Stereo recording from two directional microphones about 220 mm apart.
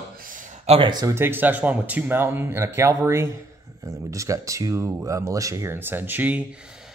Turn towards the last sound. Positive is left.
turn(degrees=-5)  # may be behind; listen again after turning